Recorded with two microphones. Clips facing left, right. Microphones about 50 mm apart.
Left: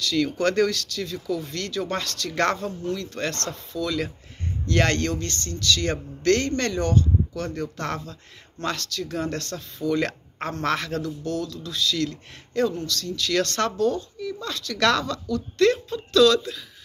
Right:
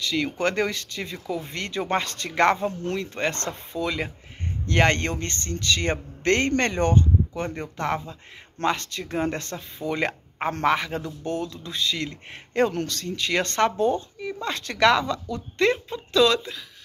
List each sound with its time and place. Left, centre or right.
0.0 s speech: centre
2.3 s a woman's voice: centre; by 14.8 s right
14.8 s a woman's voice: centre